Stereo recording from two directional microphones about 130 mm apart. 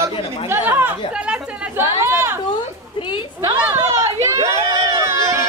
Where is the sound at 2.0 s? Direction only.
20° right (ahead or behind).